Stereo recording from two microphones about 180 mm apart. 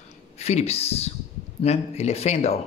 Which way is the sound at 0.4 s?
35° left (ahead or behind).